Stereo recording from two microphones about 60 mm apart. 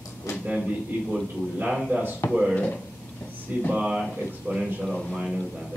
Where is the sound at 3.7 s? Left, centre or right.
Centre.